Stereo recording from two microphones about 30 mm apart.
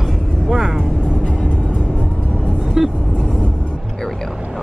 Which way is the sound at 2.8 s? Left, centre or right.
Centre.